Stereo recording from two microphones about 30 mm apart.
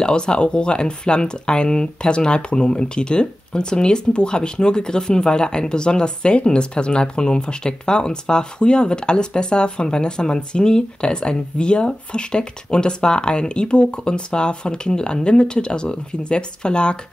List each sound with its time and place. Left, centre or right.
0.0 s speech: left